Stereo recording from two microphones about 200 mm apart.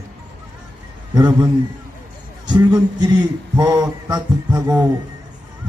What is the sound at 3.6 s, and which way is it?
Music, 20° right (ahead or behind).